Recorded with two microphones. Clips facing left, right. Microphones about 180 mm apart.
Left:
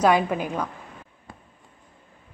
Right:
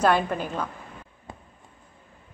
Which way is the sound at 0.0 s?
10° left (ahead or behind).